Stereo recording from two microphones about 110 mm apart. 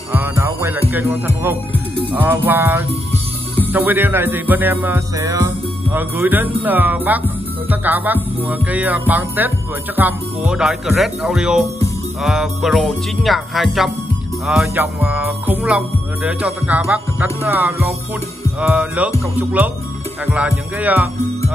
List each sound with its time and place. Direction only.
0.1 s music: 20° right (ahead or behind)
5.1 s music: 30° right (ahead or behind)
5.9 s music: 20° right (ahead or behind)
9.9 s speech: 15° right (ahead or behind)
14.8 s music: 15° right (ahead or behind)